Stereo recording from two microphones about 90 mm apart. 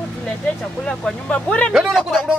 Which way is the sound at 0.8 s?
10° left (ahead or behind).